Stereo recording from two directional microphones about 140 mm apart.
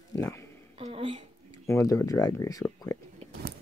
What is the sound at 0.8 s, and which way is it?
Speech, 40° right (ahead or behind).